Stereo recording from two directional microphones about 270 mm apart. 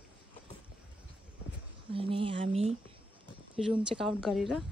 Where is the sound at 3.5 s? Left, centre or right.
Centre.